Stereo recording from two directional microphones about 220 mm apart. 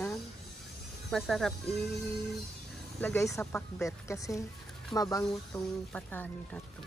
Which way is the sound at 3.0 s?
5° left (ahead or behind).